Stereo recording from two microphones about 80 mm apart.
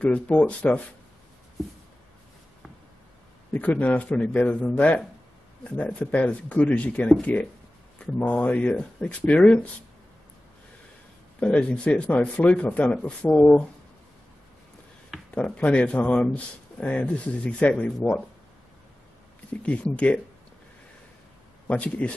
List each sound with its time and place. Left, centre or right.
0.0 s a man's voice: centre
3.5 s a man's voice: left
11.3 s a man's voice: centre
15.3 s a man's voice: centre
19.6 s a man's voice: centre
21.6 s a man's voice: centre